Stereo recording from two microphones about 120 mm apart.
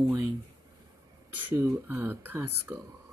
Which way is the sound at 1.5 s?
15° right (ahead or behind).